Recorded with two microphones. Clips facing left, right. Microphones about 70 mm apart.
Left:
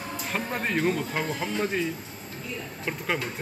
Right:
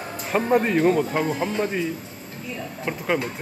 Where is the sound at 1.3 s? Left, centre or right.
Right.